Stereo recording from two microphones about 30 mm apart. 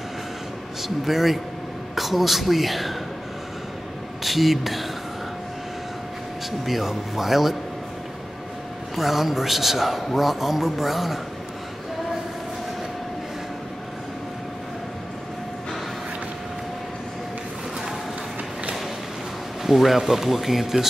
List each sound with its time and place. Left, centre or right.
0.8 s speech: centre
4.2 s speech: centre
6.6 s a man's voice: centre
8.9 s a man's voice: centre
19.6 s a man's voice: centre